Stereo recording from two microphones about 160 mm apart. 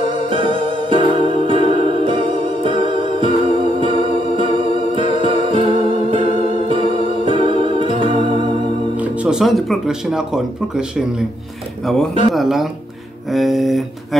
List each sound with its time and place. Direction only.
0.3 s music: 30° right (ahead or behind)
8.9 s speech: 10° right (ahead or behind)